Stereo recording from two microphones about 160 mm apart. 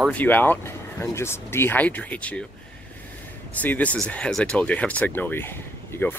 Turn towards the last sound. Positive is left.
turn(degrees=15)  # may be behind; listen again after turning